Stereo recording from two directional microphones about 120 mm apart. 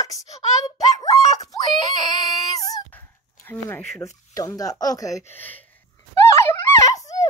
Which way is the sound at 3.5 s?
20° left (ahead or behind).